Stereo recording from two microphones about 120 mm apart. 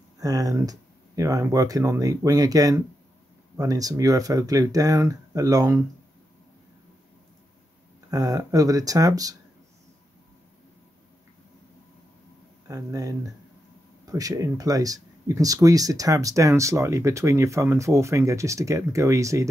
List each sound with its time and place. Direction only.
0.2 s speech: 30° right (ahead or behind)
8.1 s speech: 30° right (ahead or behind)
12.6 s speech: 30° right (ahead or behind)